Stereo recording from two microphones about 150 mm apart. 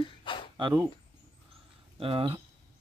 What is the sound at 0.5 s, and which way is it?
Speech, 30° right (ahead or behind).